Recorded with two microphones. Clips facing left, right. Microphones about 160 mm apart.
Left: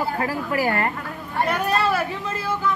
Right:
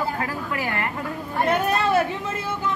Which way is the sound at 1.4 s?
20° right (ahead or behind).